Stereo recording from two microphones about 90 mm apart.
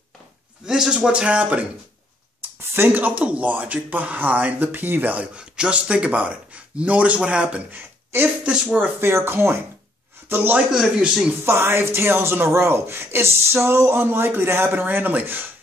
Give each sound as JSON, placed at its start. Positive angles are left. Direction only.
{"t": 0.7, "sound": "speech", "side_deg": -10}
{"t": 2.7, "sound": "speech", "side_deg": -25}
{"t": 8.1, "sound": "a man's voice", "side_deg": -30}
{"t": 10.7, "sound": "a man's voice", "side_deg": -5}
{"t": 11.4, "sound": "speech", "side_deg": -25}